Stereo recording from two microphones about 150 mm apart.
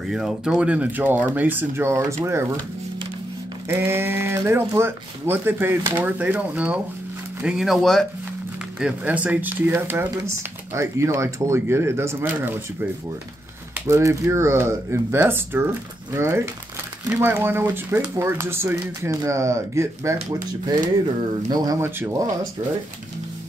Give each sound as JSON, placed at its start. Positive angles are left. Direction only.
{"t": 0.0, "sound": "speech", "side_deg": -5}
{"t": 3.6, "sound": "speech", "side_deg": -15}
{"t": 13.8, "sound": "speech", "side_deg": -20}
{"t": 21.5, "sound": "speech", "side_deg": -25}